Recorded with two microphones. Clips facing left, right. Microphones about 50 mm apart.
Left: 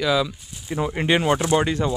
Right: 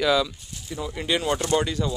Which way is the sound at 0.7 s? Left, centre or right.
Left.